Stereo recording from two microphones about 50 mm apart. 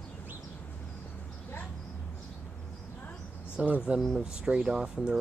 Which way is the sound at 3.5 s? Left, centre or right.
Right.